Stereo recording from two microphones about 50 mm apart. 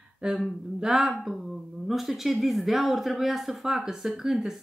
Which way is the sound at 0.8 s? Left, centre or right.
Centre.